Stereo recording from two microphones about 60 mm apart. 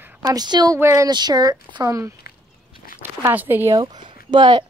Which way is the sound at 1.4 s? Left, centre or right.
Right.